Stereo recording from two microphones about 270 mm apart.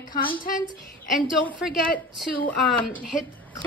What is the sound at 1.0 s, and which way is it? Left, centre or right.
Speech, centre.